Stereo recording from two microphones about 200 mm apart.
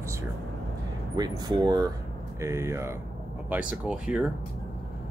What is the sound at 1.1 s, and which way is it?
Speech, 20° right (ahead or behind).